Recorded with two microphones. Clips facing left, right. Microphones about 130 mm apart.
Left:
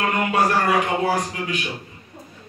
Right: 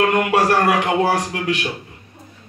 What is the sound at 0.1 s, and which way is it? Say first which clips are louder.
Music: right 4 dB; 70° right (ahead or behind).